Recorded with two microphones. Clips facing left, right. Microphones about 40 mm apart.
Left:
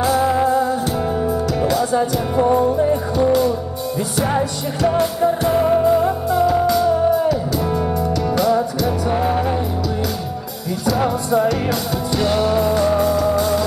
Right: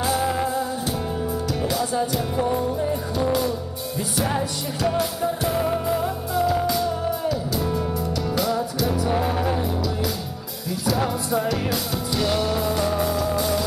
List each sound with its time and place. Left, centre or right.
0.0 s music: centre
2.0 s music: centre
11.0 s music: centre